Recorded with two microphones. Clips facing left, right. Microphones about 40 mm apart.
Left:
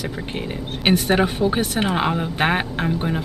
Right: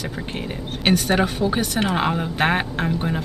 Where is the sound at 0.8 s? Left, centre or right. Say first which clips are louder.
Left 1 dB; centre.